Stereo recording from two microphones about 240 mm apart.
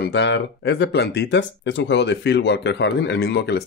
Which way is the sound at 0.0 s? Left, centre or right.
Left.